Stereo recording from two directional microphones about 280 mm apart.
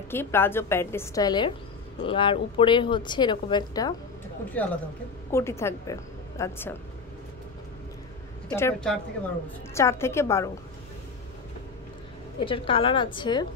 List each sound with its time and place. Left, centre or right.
0.1 s a woman's voice: centre
8.5 s a woman's voice: centre
12.4 s a woman's voice: centre